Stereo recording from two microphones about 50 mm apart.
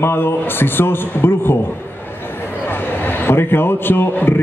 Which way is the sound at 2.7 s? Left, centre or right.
Left.